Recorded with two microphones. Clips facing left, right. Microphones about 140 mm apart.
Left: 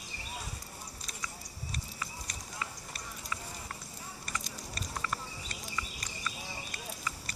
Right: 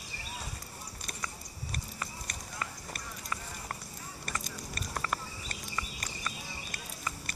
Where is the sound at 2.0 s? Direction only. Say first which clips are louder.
Right 1 dB; 50° right (ahead or behind).